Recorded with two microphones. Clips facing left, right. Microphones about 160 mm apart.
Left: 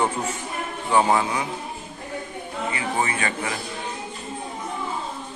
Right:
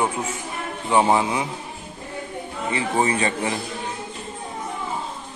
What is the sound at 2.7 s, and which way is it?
Speech, 30° right (ahead or behind).